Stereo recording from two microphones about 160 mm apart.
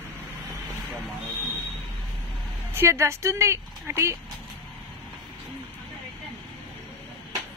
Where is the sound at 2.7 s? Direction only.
15° right (ahead or behind).